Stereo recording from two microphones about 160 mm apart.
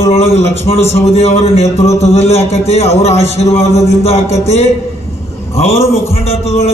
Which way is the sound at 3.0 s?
40° left (ahead or behind).